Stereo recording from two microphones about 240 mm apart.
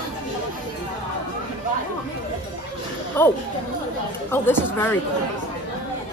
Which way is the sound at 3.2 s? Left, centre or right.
Centre.